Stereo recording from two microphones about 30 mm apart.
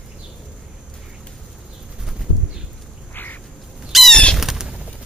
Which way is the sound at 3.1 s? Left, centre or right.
Left.